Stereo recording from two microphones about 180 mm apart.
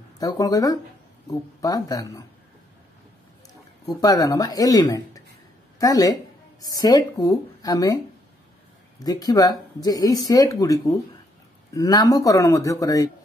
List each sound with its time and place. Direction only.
0.2 s speech: 20° left (ahead or behind)
3.8 s a woman's voice: 20° left (ahead or behind)
9.0 s speech: 20° left (ahead or behind)